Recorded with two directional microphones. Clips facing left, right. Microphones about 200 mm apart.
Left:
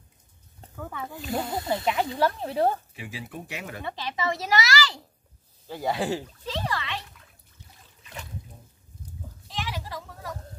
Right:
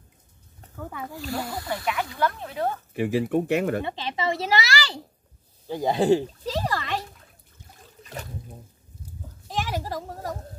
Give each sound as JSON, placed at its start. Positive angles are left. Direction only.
{"t": 1.1, "sound": "speech", "side_deg": 20}
{"t": 2.9, "sound": "speech", "side_deg": -55}
{"t": 3.8, "sound": "speech", "side_deg": -25}
{"t": 5.7, "sound": "speech", "side_deg": -20}
{"t": 6.4, "sound": "a sound", "side_deg": -40}
{"t": 8.0, "sound": "boat", "side_deg": -40}
{"t": 9.5, "sound": "a sound", "side_deg": -45}